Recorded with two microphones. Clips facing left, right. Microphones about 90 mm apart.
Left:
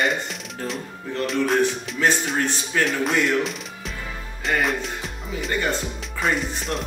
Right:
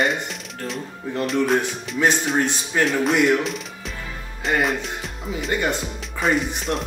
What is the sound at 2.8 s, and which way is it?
Speech, centre (ahead or behind).